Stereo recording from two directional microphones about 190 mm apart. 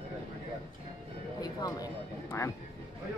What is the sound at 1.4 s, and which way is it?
A man's voice, 20° left (ahead or behind).